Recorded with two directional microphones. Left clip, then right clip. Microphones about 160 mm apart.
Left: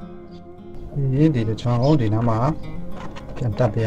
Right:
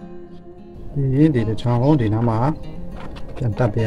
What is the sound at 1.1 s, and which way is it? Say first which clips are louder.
Speech: right 3 dB; 70° right (ahead or behind).